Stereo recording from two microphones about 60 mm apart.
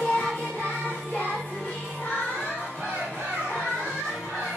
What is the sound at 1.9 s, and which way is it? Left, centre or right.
Music, left.